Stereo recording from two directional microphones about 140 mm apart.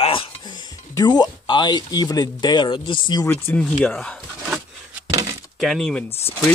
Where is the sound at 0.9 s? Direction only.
30° left (ahead or behind).